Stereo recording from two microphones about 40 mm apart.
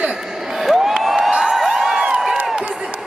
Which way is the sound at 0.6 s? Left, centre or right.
Centre.